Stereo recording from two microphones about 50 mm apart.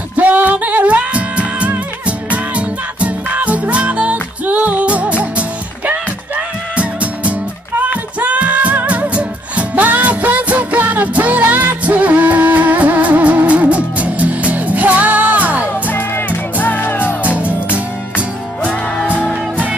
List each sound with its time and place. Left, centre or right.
0.1 s music: right
15.9 s music: left
17.2 s music: right